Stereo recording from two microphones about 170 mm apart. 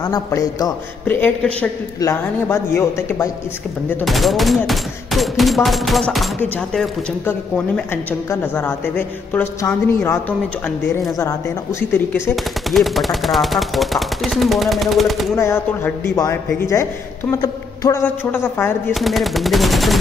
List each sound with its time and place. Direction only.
0.0 s a man's voice: 20° left (ahead or behind)
1.0 s a woman's voice: 10° left (ahead or behind)
4.0 s a woman's voice: centre (ahead or behind)
11.9 s speech: 10° left (ahead or behind)
15.3 s a woman's voice: 15° left (ahead or behind)
18.9 s speech: centre (ahead or behind)